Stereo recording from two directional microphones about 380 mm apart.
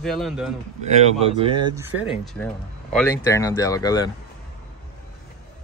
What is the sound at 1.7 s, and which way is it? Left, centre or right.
A man's voice, centre.